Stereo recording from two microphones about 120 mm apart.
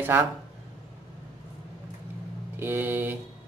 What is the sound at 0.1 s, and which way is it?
Speech, 15° right (ahead or behind).